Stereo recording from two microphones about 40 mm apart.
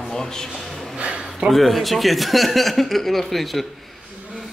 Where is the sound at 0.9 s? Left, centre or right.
Right.